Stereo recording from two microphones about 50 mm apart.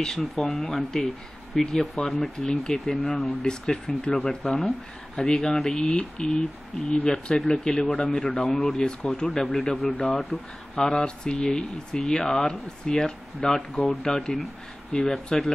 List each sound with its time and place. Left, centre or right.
0.0 s speech: centre
3.4 s speech: centre
8.4 s speech: centre